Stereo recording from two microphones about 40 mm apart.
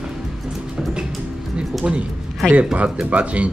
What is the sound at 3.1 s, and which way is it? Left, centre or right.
Speech, right.